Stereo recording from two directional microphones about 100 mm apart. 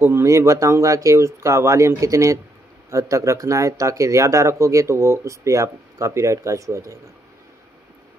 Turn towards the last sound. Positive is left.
turn(degrees=-30)  # may be behind; listen again after turning